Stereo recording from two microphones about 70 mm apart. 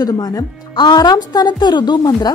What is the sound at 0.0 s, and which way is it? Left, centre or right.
A woman's voice, left.